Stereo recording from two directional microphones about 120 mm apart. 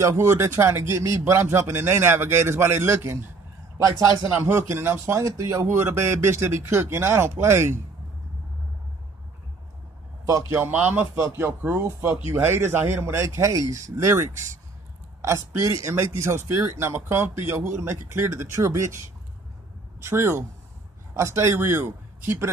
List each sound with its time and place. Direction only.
0.0 s speech: 25° right (ahead or behind)
10.5 s speech: 15° right (ahead or behind)
20.0 s a man's voice: 20° right (ahead or behind)